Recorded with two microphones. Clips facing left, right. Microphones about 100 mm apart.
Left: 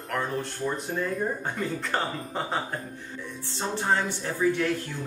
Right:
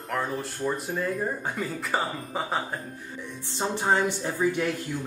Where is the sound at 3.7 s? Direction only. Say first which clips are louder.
Right 2 dB; 15° right (ahead or behind).